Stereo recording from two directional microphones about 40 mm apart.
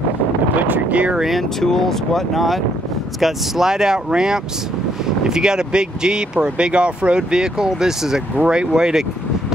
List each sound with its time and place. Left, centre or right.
1.6 s speech: centre